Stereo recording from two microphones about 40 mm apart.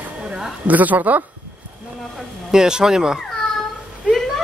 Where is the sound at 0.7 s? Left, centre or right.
Right.